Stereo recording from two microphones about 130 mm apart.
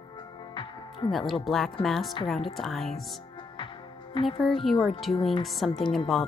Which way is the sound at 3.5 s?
40° left (ahead or behind).